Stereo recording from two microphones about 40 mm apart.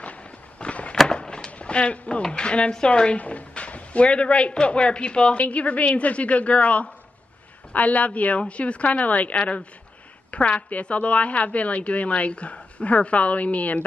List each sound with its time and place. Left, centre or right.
0.0 s fireworks: left
1.0 s a sound: left
1.5 s a woman's voice: left
5.4 s a woman's voice: left